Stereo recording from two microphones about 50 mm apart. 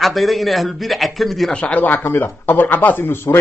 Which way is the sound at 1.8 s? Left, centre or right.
Left.